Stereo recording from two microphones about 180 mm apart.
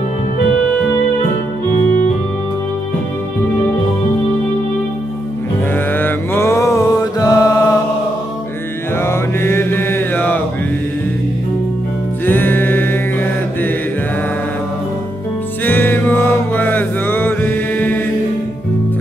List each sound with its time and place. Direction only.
5.9 s mantra: 10° left (ahead or behind)
9.0 s mantra: 15° left (ahead or behind)
12.3 s mantra: 10° left (ahead or behind)
15.6 s music: 10° left (ahead or behind)